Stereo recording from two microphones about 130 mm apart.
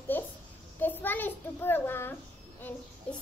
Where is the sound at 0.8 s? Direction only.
15° left (ahead or behind).